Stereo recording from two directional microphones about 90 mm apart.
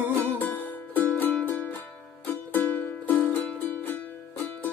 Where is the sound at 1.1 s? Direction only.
20° left (ahead or behind).